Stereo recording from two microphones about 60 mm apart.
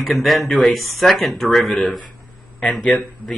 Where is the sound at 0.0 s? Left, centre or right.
Centre.